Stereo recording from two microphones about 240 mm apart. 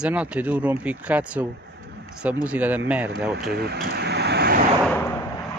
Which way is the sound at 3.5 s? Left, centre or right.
Right.